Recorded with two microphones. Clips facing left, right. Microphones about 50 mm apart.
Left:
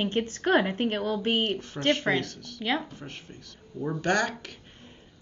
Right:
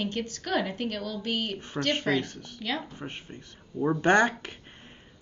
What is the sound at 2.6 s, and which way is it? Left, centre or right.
Speech, left.